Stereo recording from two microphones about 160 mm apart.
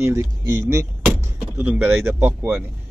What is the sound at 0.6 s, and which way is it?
Speech, 15° right (ahead or behind).